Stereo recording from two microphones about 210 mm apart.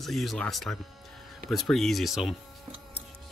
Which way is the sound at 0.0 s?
Centre (ahead or behind).